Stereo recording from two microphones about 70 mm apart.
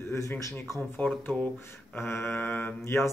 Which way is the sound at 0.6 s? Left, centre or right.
Left.